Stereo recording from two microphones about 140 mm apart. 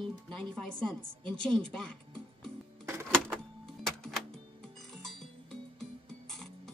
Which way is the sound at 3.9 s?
Centre (ahead or behind).